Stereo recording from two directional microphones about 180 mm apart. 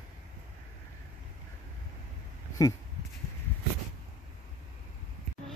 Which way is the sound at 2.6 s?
20° left (ahead or behind).